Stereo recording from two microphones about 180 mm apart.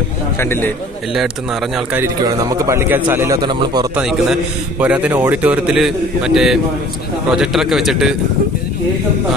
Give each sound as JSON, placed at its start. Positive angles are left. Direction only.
{"t": 0.4, "sound": "a man's voice", "side_deg": 10}
{"t": 2.2, "sound": "a man's voice", "side_deg": -20}
{"t": 3.9, "sound": "a man's voice", "side_deg": -5}